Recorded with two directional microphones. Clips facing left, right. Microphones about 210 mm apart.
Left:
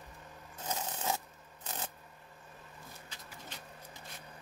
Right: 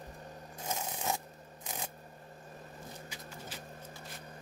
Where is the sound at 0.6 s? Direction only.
10° right (ahead or behind).